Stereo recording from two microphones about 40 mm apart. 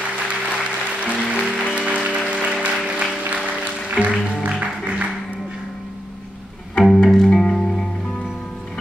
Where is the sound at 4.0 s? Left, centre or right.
Centre.